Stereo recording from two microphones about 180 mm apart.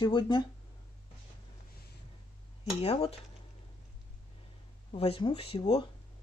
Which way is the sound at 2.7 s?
35° left (ahead or behind).